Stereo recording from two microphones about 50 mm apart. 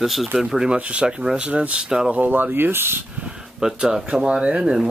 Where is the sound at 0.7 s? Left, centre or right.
Right.